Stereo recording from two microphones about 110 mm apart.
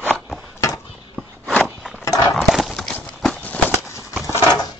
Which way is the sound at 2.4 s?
Centre (ahead or behind).